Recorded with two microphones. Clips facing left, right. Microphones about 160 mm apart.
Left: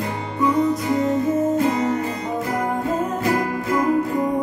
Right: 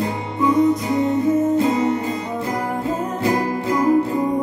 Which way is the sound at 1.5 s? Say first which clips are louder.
Right 2 dB; 30° right (ahead or behind).